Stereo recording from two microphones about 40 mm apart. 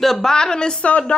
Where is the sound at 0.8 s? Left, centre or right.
Left.